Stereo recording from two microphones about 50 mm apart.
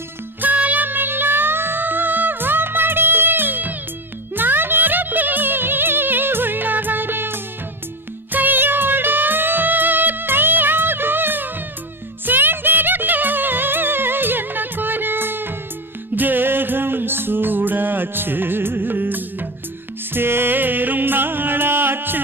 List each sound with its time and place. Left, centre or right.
0.4 s music: right